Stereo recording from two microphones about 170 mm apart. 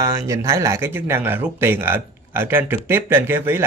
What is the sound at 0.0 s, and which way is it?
Speech, 15° right (ahead or behind).